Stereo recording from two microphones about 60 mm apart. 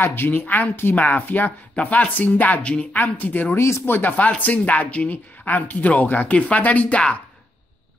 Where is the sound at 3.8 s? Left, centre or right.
Left.